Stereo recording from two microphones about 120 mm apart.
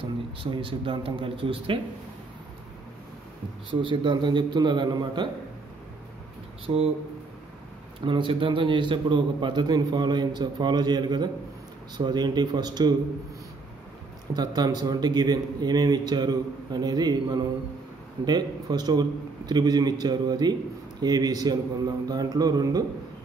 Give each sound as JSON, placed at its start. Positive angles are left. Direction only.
{"t": 0.0, "sound": "speech", "side_deg": -45}
{"t": 3.8, "sound": "a man's voice", "side_deg": -40}
{"t": 6.6, "sound": "speech", "side_deg": -55}
{"t": 8.0, "sound": "a man's voice", "side_deg": -45}
{"t": 14.3, "sound": "a man's voice", "side_deg": -35}